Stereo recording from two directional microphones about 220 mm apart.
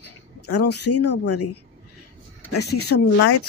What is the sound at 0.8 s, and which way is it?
Speech, 90° left.